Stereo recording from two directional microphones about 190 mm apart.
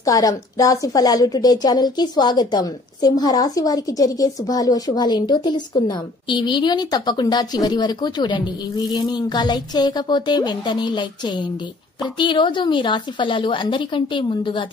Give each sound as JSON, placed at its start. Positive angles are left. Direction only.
{"t": 0.0, "sound": "a woman's voice", "side_deg": 20}